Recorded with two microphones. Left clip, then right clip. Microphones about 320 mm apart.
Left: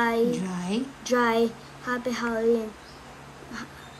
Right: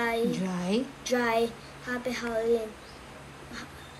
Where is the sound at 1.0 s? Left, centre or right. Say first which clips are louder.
Left 4 dB; left.